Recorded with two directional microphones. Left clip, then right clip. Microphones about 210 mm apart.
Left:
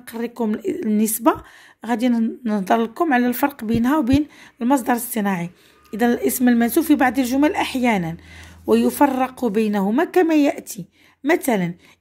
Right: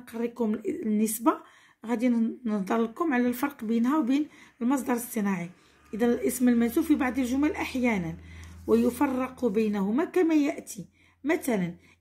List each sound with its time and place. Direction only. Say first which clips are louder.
0.0 s speech: left 5 dB; 35° left (ahead or behind)